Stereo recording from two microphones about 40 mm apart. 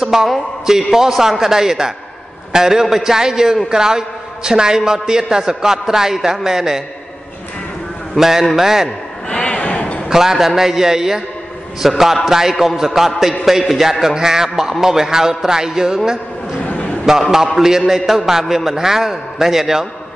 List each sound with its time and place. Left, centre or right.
0.0 s a man's voice: centre
8.2 s a man's voice: centre
9.3 s a sound: left
10.0 s a man's voice: centre
11.8 s a man's voice: centre
16.6 s a sound: left
17.6 s a man's voice: centre